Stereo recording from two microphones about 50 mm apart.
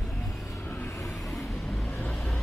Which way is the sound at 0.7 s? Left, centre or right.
Left.